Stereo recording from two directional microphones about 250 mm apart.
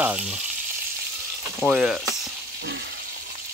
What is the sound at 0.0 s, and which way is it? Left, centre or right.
Frying, centre.